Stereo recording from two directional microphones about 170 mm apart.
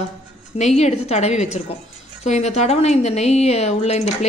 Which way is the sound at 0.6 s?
40° left (ahead or behind).